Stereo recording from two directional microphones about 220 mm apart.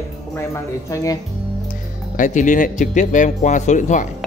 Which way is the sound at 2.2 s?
35° left (ahead or behind).